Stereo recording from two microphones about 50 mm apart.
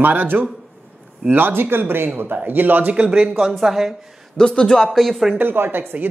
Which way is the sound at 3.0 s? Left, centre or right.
Centre.